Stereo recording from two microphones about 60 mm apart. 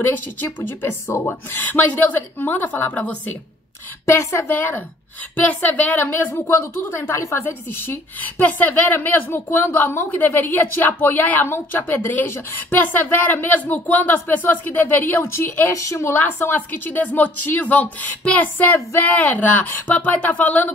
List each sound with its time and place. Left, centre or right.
0.0 s a woman's voice: left
1.0 s a woman's voice: left
1.6 s a woman's voice: left
4.0 s a woman's voice: left
4.5 s a woman's voice: left
6.3 s a woman's voice: left
7.4 s a woman's voice: left
15.7 s a woman's voice: left